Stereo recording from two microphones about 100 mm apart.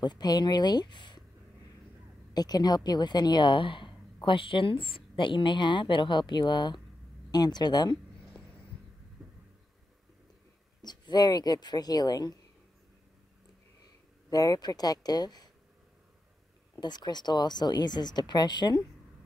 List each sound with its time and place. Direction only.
0.0 s a woman's voice: 45° left (ahead or behind)
2.3 s a woman's voice: 40° left (ahead or behind)
10.8 s a woman's voice: 45° left (ahead or behind)
14.3 s speech: 40° left (ahead or behind)
16.8 s a woman's voice: 45° left (ahead or behind)